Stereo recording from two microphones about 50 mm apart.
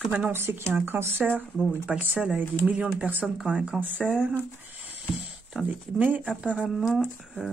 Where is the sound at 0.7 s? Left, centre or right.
Right.